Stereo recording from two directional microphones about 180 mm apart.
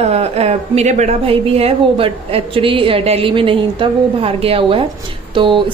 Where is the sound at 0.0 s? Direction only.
35° right (ahead or behind).